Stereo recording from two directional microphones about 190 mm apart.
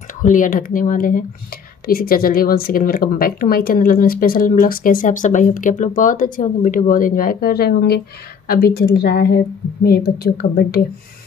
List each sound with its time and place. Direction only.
0.2 s a woman's voice: 45° left (ahead or behind)